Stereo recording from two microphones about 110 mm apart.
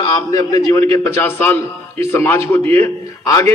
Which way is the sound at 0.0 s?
40° left (ahead or behind).